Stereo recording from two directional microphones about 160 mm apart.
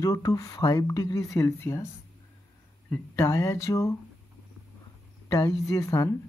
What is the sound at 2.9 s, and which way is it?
Speech, 20° left (ahead or behind).